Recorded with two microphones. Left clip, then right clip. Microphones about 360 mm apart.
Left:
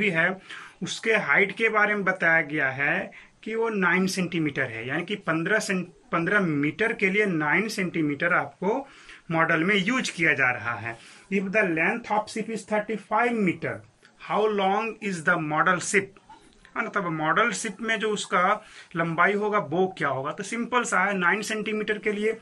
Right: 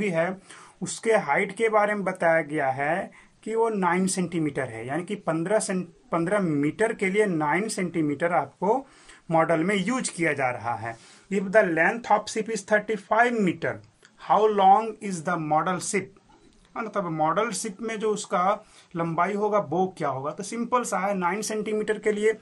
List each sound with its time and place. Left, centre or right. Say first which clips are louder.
0.0 s speech: left 2 dB; centre